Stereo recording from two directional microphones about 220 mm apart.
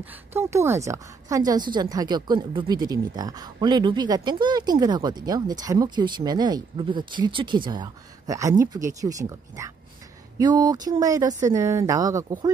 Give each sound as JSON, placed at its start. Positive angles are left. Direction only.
{"t": 0.0, "sound": "a woman's voice", "side_deg": -10}